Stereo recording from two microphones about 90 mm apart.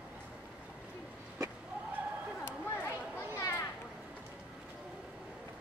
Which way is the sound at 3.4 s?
35° left (ahead or behind).